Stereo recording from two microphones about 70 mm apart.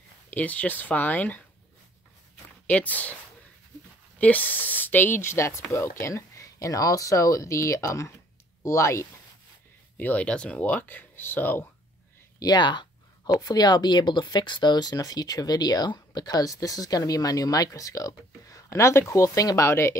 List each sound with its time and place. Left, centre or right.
0.3 s speech: left
2.6 s speech: left
4.2 s speech: left
9.9 s speech: left
12.4 s speech: left
13.3 s speech: left
16.2 s speech: left
19.7 s speech: left